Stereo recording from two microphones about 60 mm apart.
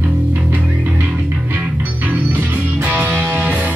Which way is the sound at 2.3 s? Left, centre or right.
Right.